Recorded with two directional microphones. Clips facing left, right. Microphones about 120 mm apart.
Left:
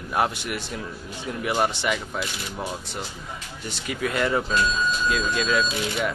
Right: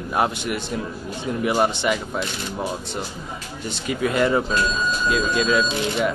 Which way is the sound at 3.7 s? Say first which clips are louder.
Right 5 dB; 25° right (ahead or behind).